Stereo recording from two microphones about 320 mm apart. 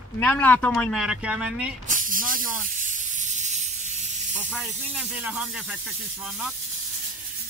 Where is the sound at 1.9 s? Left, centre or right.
Right.